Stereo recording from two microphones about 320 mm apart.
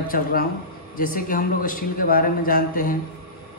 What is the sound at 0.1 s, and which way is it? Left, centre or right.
A man's voice, left.